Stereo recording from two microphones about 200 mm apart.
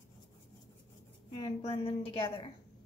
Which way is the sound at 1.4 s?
30° left (ahead or behind).